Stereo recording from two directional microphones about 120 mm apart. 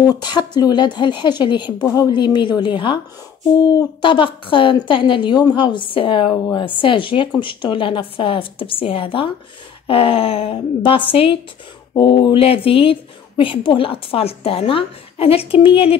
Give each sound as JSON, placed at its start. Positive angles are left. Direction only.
{"t": 0.0, "sound": "a woman's voice", "side_deg": 35}
{"t": 4.0, "sound": "a woman's voice", "side_deg": 45}
{"t": 11.9, "sound": "a woman's voice", "side_deg": 35}